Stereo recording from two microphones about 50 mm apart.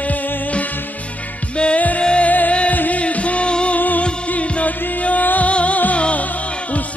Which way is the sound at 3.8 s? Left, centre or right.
Left.